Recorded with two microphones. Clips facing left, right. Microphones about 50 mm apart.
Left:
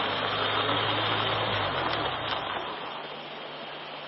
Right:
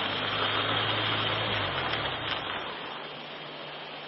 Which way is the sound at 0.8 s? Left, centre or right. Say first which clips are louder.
Left 2 dB; left.